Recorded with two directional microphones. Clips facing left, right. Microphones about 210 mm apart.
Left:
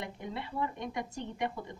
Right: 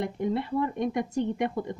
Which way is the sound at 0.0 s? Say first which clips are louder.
Right 11 dB; 45° right (ahead or behind).